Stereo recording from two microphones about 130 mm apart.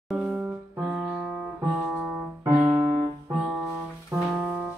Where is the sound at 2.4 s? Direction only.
20° right (ahead or behind).